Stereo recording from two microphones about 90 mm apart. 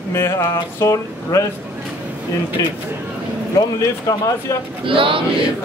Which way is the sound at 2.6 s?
40° left (ahead or behind).